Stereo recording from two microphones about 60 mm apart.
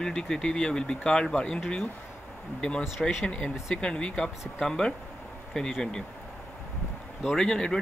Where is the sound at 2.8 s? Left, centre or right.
Centre.